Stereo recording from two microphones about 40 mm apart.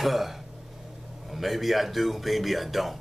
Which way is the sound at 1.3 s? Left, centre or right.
Centre.